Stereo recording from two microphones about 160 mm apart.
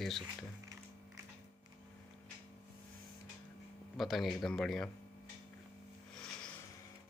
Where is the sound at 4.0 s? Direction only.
Centre (ahead or behind).